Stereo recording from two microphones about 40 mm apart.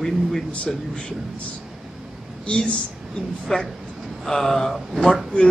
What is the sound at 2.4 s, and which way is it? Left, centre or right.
Speech, left.